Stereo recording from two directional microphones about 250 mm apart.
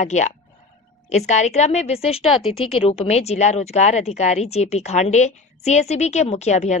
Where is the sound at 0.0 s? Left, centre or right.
Left.